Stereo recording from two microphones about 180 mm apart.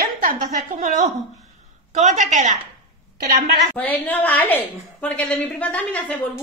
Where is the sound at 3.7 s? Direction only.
10° left (ahead or behind).